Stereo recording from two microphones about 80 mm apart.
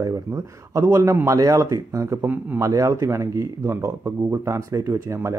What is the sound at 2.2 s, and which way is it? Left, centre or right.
Speech, right.